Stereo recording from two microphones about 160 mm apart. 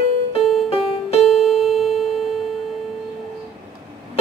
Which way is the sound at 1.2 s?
Centre (ahead or behind).